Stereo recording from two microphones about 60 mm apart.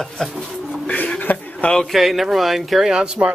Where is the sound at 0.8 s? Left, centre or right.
Left.